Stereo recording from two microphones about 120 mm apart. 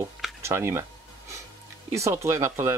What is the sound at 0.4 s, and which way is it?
Speech, 20° right (ahead or behind).